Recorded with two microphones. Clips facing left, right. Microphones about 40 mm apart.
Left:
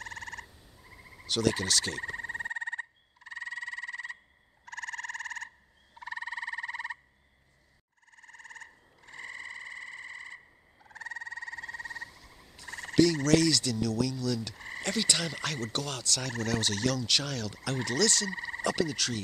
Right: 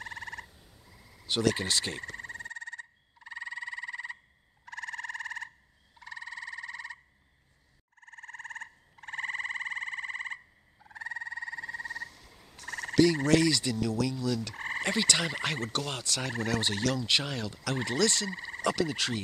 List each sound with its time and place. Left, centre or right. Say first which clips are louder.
0.0 s frog: right 1 dB; centre
0.8 s a sound: left 7 dB; left
1.2 s turkey: even; right
2.0 s frog: left 5 dB; centre
3.3 s frog: even; centre
5.9 s frog: left 4 dB; centre
8.0 s frog: right 7 dB; right
10.9 s frog: right 2 dB; centre
12.5 s frog: right 3 dB; right
13.0 s turkey: even; right
14.5 s frog: right 6 dB; right
14.9 s turkey: right 1 dB; right